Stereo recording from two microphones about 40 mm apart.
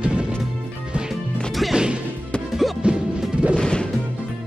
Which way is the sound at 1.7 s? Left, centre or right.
Right.